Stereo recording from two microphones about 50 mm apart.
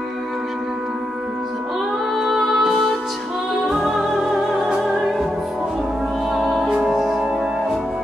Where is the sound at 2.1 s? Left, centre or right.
Centre.